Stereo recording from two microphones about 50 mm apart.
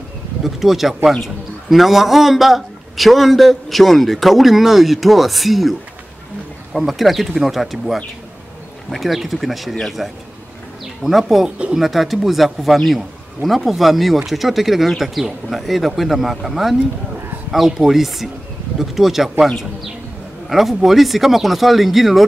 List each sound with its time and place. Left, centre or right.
0.4 s speech: centre
11.4 s speech: right
11.7 s speech: centre